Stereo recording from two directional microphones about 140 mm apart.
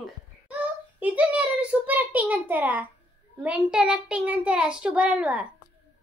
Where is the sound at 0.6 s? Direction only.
10° right (ahead or behind).